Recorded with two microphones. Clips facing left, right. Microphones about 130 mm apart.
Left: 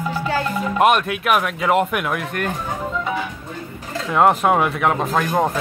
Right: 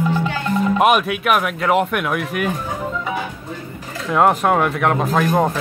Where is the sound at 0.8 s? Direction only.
Centre (ahead or behind).